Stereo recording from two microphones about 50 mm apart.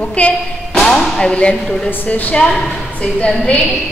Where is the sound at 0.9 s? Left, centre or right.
Centre.